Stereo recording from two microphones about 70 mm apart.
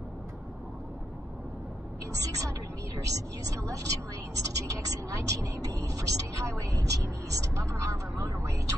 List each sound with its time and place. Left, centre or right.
2.1 s speech: right